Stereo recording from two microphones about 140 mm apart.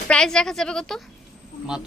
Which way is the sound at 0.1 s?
5° left (ahead or behind).